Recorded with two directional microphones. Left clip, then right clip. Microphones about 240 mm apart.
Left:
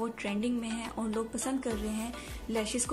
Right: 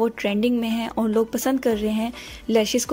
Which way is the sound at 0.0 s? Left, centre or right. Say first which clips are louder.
Right 12 dB; right.